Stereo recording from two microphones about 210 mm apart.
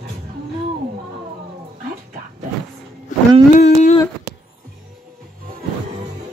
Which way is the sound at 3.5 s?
35° left (ahead or behind).